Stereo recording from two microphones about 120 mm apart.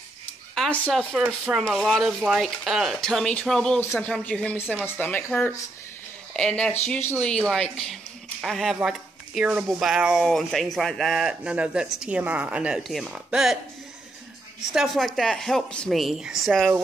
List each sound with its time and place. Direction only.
0.7 s speech: 10° left (ahead or behind)
1.1 s speech: 5° right (ahead or behind); by 6.8 s 10° left (ahead or behind)
7.0 s speech: 20° left (ahead or behind)
7.2 s speech: 5° left (ahead or behind)
14.7 s speech: centre (ahead or behind)